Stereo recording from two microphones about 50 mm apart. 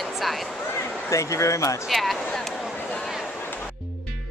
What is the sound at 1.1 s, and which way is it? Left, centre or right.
Speech, left.